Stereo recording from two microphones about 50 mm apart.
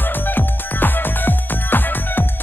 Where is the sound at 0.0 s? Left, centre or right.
Left.